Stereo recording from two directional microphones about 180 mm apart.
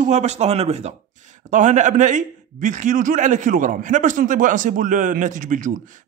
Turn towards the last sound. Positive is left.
turn(degrees=-45)  # may be behind; listen again after turning